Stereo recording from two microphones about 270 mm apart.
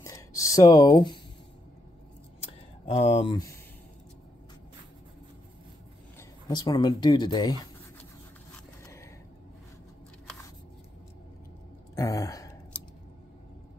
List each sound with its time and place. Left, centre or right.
0.0 s speech: centre
2.9 s speech: left
6.1 s speech: centre
11.9 s speech: centre